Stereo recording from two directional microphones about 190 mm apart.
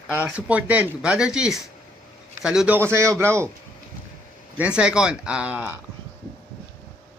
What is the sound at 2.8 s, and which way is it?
Speech, 15° right (ahead or behind).